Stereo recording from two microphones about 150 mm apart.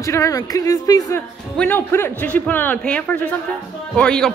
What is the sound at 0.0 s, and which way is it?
A man's voice, 20° left (ahead or behind).